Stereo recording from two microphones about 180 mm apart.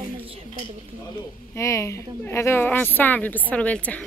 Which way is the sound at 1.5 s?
15° left (ahead or behind).